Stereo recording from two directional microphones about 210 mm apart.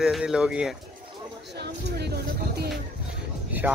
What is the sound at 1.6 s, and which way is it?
Music, 50° right (ahead or behind).